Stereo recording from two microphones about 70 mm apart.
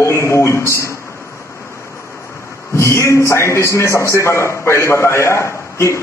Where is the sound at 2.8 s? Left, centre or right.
Left.